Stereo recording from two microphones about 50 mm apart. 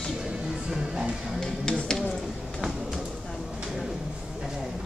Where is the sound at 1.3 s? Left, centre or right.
Centre.